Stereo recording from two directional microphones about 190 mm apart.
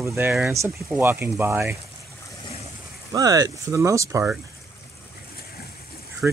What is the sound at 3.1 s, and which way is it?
Speech, 20° right (ahead or behind).